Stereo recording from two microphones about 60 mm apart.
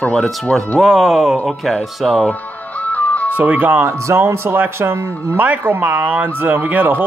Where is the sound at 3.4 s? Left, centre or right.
Right.